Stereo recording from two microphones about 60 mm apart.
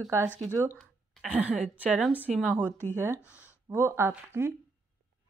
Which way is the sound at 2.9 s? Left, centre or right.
Right.